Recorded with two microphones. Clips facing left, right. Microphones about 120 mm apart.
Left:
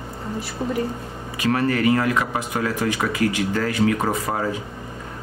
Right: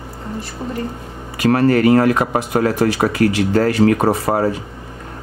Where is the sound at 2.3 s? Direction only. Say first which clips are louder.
Right 7 dB; 70° right (ahead or behind).